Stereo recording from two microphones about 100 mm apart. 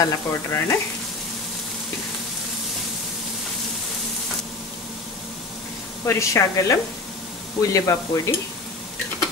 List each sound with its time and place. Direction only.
0.0 s frying: 30° left (ahead or behind)
6.0 s speech: 30° left (ahead or behind)